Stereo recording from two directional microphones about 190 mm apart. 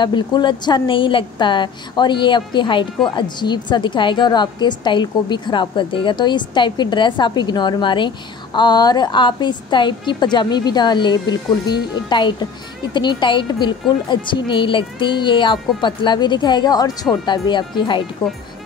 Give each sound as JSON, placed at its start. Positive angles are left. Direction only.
{"t": 0.0, "sound": "speech", "side_deg": 25}